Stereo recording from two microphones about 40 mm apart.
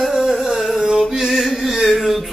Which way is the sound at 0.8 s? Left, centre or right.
Centre.